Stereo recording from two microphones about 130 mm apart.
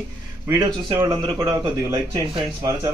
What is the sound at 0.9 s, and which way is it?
Speech, 30° right (ahead or behind).